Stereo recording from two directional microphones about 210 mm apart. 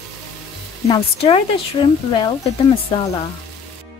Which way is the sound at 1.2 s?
25° left (ahead or behind).